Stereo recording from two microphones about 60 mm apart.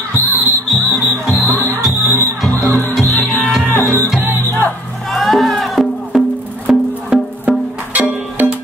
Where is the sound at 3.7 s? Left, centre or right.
Left.